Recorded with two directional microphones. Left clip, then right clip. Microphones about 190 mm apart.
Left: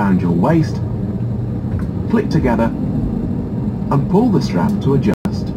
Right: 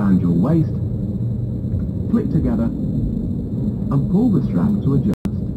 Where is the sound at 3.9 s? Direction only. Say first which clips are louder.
Left 5 dB; 65° left (ahead or behind).